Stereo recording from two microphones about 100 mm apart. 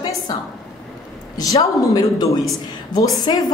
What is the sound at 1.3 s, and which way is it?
A woman's voice, 35° left (ahead or behind).